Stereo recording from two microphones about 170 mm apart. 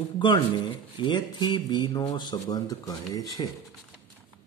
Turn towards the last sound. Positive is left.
turn(degrees=20)  # may be behind; listen again after turning